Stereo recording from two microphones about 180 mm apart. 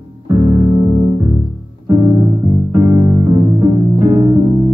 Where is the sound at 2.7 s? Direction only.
20° right (ahead or behind).